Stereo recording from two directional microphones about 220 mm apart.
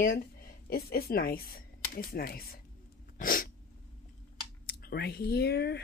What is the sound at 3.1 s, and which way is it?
Sneeze, 40° left (ahead or behind).